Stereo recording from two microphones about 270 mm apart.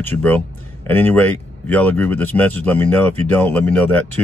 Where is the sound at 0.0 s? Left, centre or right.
Centre.